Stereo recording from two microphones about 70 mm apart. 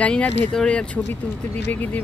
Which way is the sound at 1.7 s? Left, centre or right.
Left.